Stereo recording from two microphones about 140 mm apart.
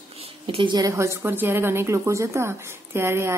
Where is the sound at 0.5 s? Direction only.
35° right (ahead or behind).